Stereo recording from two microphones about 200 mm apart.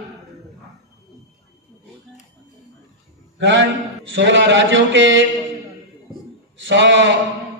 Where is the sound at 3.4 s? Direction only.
60° right (ahead or behind).